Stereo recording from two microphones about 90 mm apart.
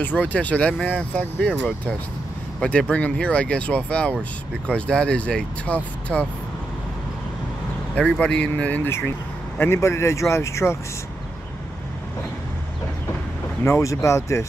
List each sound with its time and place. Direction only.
0.0 s speech: 15° left (ahead or behind)
2.6 s speech: 10° left (ahead or behind)
8.0 s speech: 15° left (ahead or behind)
9.6 s speech: 30° left (ahead or behind)
13.7 s speech: 35° left (ahead or behind)